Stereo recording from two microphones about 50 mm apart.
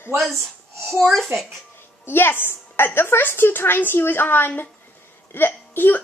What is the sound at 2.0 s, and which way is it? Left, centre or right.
A woman's voice, left.